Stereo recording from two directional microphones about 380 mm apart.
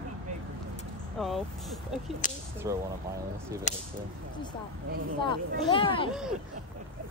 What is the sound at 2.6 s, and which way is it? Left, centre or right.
Speech, centre.